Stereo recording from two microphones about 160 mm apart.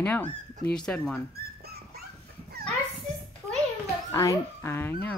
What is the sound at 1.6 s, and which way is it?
Dog, 75° right (ahead or behind).